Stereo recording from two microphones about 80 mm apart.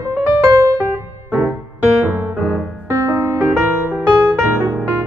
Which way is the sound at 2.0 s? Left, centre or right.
Right.